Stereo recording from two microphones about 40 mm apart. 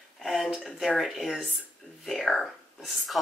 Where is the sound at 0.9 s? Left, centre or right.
Centre.